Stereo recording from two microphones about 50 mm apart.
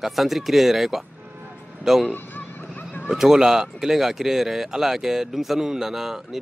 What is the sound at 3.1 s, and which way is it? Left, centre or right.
Speech, centre.